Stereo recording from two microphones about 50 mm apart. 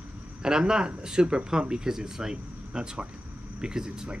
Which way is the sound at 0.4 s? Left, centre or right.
Centre.